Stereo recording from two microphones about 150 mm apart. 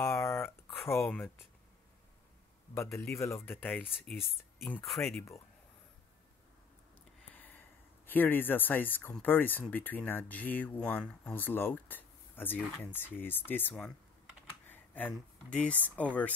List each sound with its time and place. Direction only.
0.1 s a sound: 15° left (ahead or behind)
0.7 s speech: centre (ahead or behind)
2.7 s speech: 20° left (ahead or behind); by 4.3 s 5° left (ahead or behind)
5.0 s speech: 20° left (ahead or behind)
7.3 s a sound: 10° left (ahead or behind)
8.1 s speech: 15° left (ahead or behind)